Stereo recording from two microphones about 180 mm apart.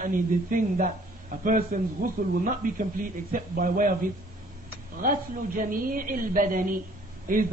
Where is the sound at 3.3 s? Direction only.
50° right (ahead or behind).